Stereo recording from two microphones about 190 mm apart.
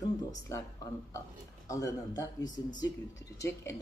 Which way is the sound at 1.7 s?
15° left (ahead or behind).